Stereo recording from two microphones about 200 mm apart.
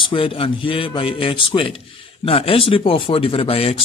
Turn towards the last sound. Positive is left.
turn(degrees=30)  # may be behind; listen again after turning